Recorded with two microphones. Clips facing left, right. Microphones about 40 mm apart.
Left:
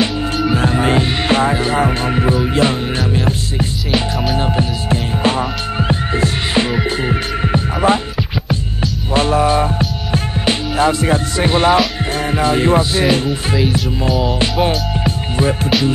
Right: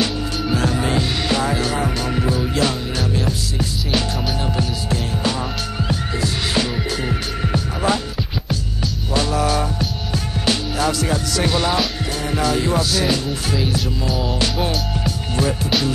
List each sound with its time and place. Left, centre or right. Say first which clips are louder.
0.5 s music: left 4 dB; left
9.1 s music: left 6 dB; left
14.4 s music: left 5 dB; left